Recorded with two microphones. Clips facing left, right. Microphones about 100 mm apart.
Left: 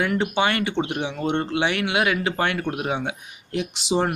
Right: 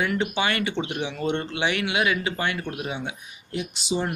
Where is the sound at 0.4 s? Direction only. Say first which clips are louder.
Left 3 dB; 50° left (ahead or behind); by 4.1 s 90° left.